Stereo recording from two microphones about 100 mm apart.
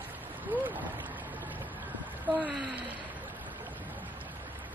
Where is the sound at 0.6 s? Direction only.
15° right (ahead or behind).